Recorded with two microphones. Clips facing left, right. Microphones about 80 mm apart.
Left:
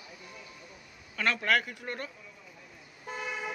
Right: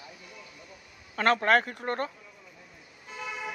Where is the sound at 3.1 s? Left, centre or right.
Left.